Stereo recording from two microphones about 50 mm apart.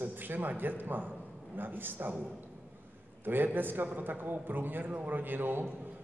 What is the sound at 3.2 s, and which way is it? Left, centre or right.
A man's voice, right.